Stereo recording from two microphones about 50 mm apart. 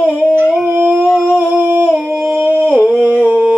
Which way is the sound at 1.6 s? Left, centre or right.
Right.